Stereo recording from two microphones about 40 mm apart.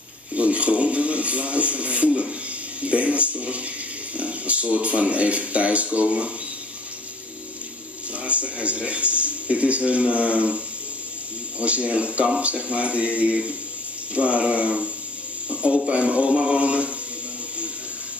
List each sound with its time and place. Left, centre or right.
0.4 s a sound: right
2.8 s speech: right
8.1 s speech: right
11.6 s speech: right
15.5 s a sound: right
15.9 s speech: right